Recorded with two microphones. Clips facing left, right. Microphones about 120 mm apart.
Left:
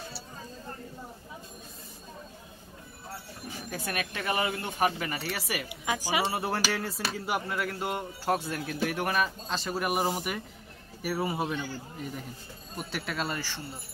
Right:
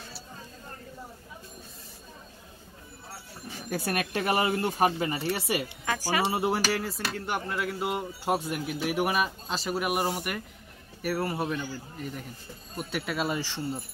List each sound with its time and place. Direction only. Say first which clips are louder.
3.7 s speech: right 6 dB; 40° right (ahead or behind); by 5.7 s 25° right (ahead or behind)
5.9 s speech: even; 15° left (ahead or behind)
6.2 s speech: right 3 dB; 20° right (ahead or behind)
6.7 s speech: right 2 dB; centre (ahead or behind)